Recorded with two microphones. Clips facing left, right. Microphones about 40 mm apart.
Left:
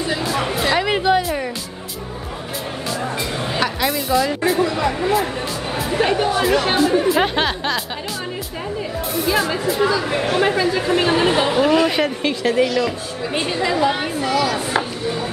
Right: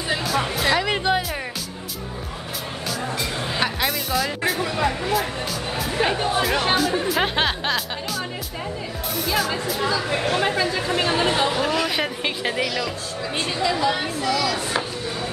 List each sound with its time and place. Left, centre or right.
0.2 s music: centre
2.9 s music: centre
3.5 s music: centre
3.9 s speech: centre
5.0 s speech: centre
9.1 s speech: centre
12.2 s a woman's voice: centre
12.8 s speech: centre